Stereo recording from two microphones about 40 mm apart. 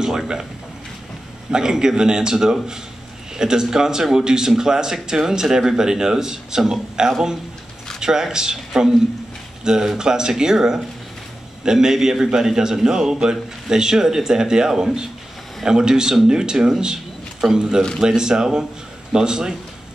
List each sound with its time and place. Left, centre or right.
0.0 s a man's voice: centre
1.5 s a man's voice: centre
9.9 s a man's voice: centre